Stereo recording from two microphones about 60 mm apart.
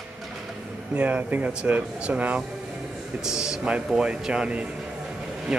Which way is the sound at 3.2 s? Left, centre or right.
Centre.